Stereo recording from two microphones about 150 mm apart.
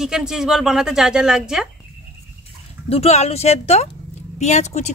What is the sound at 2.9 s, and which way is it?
Speech, 45° left (ahead or behind).